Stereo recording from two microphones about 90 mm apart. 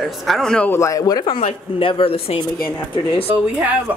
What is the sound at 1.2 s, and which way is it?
A woman's voice, 70° left (ahead or behind).